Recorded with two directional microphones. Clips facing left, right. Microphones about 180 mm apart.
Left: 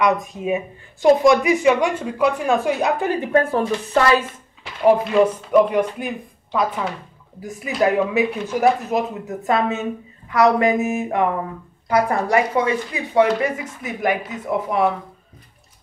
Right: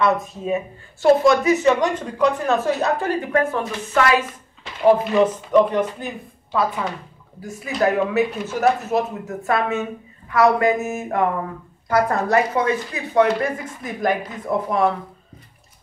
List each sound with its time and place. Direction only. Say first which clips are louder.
0.0 s speech: left 1 dB; 15° left (ahead or behind)
3.3 s speech: left 5 dB; 30° left (ahead or behind)
4.8 s speech: even; 10° left (ahead or behind)
7.4 s speech: left 1 dB; 15° left (ahead or behind)